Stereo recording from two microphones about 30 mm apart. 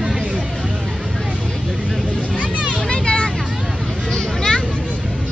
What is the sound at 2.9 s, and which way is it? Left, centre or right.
Vehicle, left.